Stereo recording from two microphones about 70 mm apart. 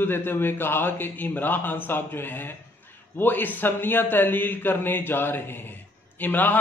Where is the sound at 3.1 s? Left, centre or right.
Left.